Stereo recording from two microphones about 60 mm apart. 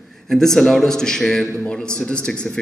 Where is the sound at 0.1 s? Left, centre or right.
Centre.